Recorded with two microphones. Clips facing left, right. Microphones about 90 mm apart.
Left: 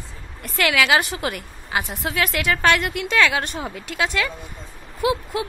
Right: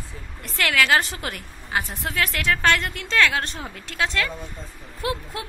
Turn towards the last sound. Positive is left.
turn(degrees=5)  # may be behind; listen again after turning